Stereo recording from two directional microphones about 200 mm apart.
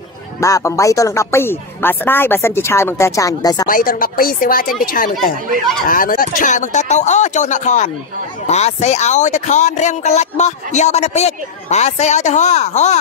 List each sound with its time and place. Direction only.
0.4 s speech: 15° left (ahead or behind)
3.6 s speech: 45° left (ahead or behind)